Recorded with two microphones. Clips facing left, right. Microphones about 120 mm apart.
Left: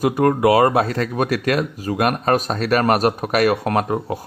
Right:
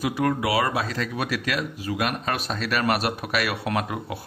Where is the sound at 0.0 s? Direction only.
45° left (ahead or behind).